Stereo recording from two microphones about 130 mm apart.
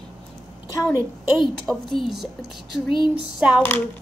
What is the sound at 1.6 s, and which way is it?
Speech, centre (ahead or behind).